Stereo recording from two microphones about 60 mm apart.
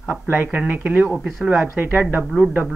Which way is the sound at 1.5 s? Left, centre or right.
Right.